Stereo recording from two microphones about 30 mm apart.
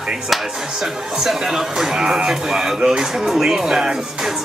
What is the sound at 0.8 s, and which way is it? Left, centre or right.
Speech, centre.